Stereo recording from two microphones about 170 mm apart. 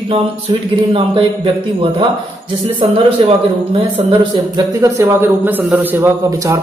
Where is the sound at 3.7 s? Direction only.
30° right (ahead or behind).